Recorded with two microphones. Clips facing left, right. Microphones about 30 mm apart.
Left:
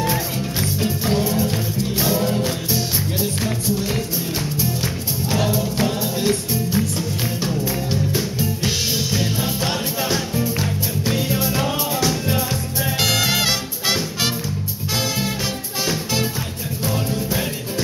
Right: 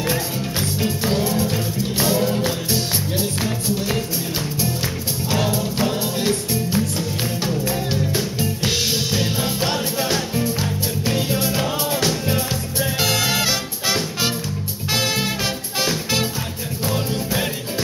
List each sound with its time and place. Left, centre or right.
0.0 s music: centre
5.4 s music: centre
8.2 s music: centre
13.0 s music: centre
13.4 s music: centre
15.0 s music: right
17.3 s music: centre